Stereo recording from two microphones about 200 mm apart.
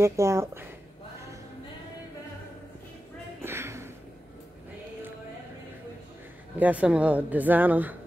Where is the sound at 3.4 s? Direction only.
15° right (ahead or behind).